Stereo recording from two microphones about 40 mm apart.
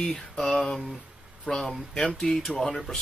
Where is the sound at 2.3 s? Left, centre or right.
Centre.